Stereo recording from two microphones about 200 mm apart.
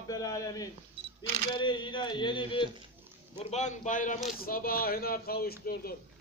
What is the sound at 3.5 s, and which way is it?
A man's voice, 35° left (ahead or behind).